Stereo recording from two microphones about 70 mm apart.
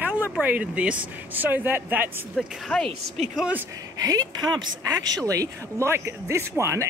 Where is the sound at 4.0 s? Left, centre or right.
Right.